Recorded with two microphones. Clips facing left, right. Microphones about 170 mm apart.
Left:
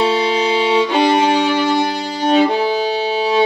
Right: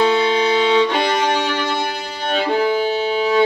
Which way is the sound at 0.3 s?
10° left (ahead or behind).